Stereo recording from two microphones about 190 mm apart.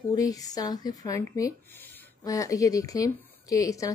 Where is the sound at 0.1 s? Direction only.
20° left (ahead or behind).